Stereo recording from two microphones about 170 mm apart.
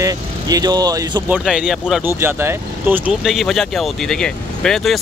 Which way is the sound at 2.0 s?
15° right (ahead or behind).